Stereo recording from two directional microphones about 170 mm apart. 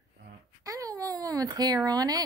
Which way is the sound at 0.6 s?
20° right (ahead or behind).